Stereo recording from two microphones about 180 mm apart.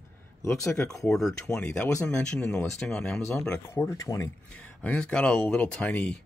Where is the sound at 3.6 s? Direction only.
15° left (ahead or behind).